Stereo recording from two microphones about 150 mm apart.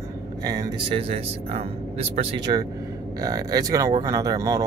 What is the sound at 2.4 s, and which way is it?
Speech, 25° right (ahead or behind).